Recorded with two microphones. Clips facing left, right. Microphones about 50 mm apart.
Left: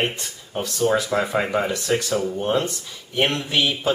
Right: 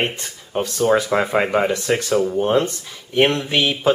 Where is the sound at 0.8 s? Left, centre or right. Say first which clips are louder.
Right 3 dB; right.